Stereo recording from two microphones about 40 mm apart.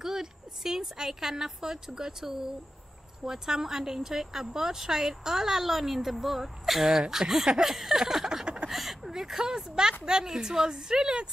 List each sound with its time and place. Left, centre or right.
0.0 s a woman's voice: centre
7.7 s a sound: centre
8.6 s a woman's voice: centre